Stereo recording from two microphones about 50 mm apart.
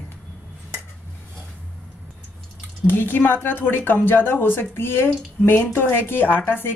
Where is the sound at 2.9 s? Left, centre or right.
Left.